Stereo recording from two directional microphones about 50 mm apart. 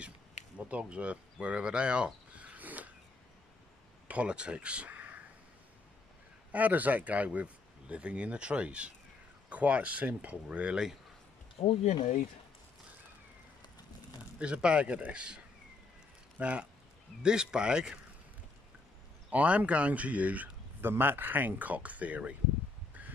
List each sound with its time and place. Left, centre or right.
0.7 s speech: right
2.3 s a sound: right
4.1 s speech: right
6.5 s speech: right
14.4 s speech: right
19.3 s speech: right
20.8 s speech: right